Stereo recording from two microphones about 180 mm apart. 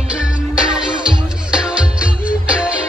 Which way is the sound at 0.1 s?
5° right (ahead or behind).